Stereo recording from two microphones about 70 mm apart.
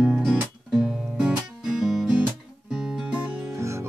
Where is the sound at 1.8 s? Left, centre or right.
Centre.